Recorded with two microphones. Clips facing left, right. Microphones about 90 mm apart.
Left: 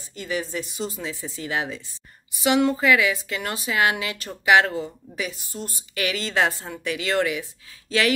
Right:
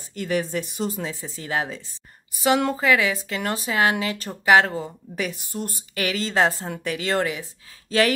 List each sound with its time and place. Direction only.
0.1 s speech: 55° right (ahead or behind)
0.9 s speech: 40° right (ahead or behind)
5.1 s speech: 55° right (ahead or behind)
5.9 s speech: 35° right (ahead or behind)